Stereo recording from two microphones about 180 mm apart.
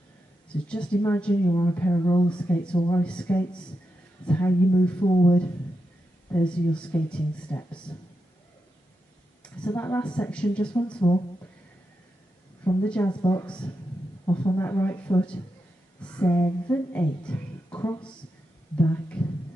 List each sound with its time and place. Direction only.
0.5 s speech: 5° left (ahead or behind)
1.4 s speech: 20° left (ahead or behind)
2.4 s speech: 10° left (ahead or behind)
2.7 s speech: 25° left (ahead or behind)
3.0 s speech: 5° left (ahead or behind)
5.0 s speech: 25° left (ahead or behind)
6.4 s speech: 5° left (ahead or behind)
9.7 s speech: 10° left (ahead or behind)
11.0 s speech: 25° left (ahead or behind)
12.8 s speech: 5° left (ahead or behind)
13.1 s speech: 20° left (ahead or behind)
14.6 s speech: 15° left (ahead or behind)